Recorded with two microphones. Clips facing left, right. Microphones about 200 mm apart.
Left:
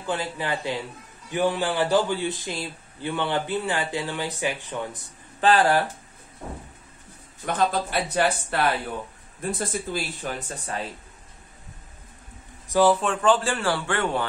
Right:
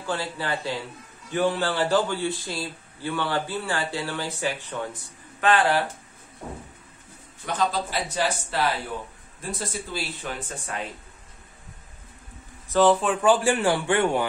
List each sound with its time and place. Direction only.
0.0 s a man's voice: 20° left (ahead or behind)
5.4 s speech: 35° left (ahead or behind)
7.4 s speech: 55° left (ahead or behind)
12.6 s a sound: 10° left (ahead or behind)
13.0 s a man's voice: 5° right (ahead or behind)